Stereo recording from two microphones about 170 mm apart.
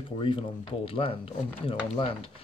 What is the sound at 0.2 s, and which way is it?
Speech, 30° left (ahead or behind).